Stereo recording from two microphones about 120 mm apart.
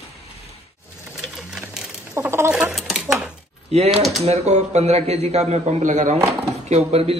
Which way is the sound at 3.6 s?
60° right (ahead or behind).